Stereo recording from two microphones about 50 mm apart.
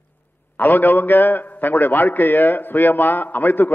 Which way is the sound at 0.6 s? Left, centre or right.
Left.